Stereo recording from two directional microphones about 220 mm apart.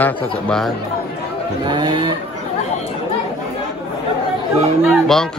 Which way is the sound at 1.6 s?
20° right (ahead or behind).